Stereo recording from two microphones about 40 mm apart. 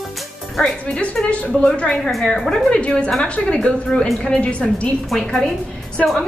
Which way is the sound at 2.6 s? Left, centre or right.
Left.